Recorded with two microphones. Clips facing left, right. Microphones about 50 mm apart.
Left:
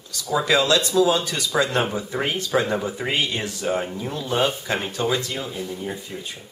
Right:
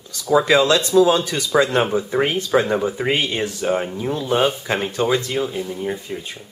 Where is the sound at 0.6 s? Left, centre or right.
Right.